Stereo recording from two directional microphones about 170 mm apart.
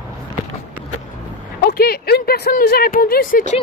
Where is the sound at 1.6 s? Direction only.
60° left (ahead or behind).